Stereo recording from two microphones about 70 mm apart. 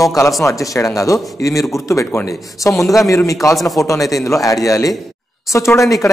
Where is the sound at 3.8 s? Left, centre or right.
Left.